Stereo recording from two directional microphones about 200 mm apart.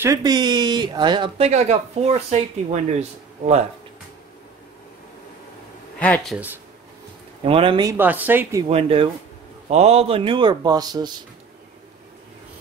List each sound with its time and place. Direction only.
0.0 s speech: 15° right (ahead or behind)
1.5 s speech: 35° right (ahead or behind)
5.9 s speech: 5° left (ahead or behind)
6.3 s a woman's voice: 10° right (ahead or behind)
7.4 s speech: 25° right (ahead or behind)
8.0 s a woman's voice: 10° right (ahead or behind)
8.6 s speech: 30° right (ahead or behind)